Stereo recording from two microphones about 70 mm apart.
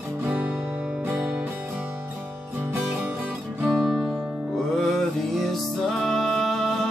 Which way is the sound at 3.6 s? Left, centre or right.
Centre.